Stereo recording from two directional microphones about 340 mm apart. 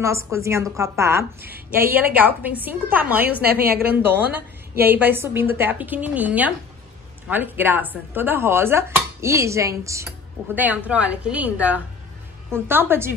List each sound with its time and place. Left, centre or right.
0.0 s a woman's voice: centre
3.6 s a woman's voice: right
4.0 s a woman's voice: centre